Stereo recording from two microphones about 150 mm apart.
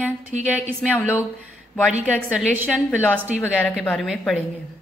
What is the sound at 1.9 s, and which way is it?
A woman's voice, 10° right (ahead or behind).